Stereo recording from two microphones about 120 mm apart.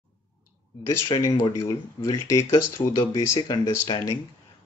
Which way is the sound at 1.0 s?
35° left (ahead or behind).